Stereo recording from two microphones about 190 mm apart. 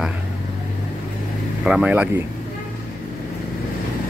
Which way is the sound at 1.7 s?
5° right (ahead or behind).